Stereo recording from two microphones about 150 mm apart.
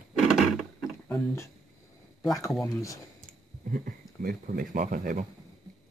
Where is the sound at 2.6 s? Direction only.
20° left (ahead or behind).